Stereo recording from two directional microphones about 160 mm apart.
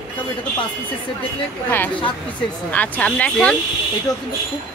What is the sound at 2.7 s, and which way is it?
Speech, 10° left (ahead or behind).